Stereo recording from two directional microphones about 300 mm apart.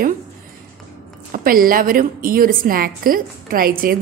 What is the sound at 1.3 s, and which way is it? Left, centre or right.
A woman's voice, right.